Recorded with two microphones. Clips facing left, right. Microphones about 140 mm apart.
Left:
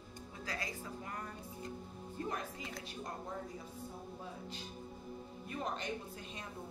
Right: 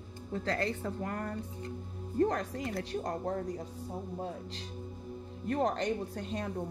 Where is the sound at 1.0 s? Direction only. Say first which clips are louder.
Right 9 dB; 55° right (ahead or behind).